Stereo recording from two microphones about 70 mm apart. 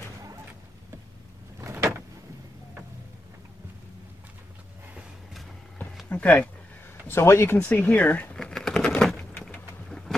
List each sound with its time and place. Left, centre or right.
1.6 s vehicle: right
6.0 s speech: centre
7.1 s speech: left
7.5 s speech: left
8.4 s a sound: centre
9.8 s insect: centre